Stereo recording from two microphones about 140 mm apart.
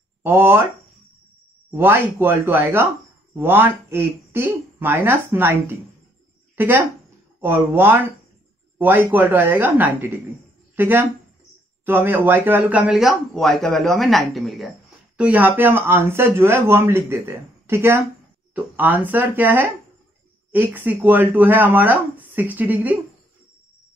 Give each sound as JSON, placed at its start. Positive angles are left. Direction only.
{"t": 0.2, "sound": "speech", "side_deg": -15}
{"t": 1.7, "sound": "speech", "side_deg": -15}
{"t": 15.1, "sound": "speech", "side_deg": -10}